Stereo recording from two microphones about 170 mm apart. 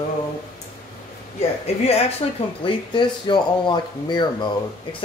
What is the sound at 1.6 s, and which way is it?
Speech, 35° left (ahead or behind).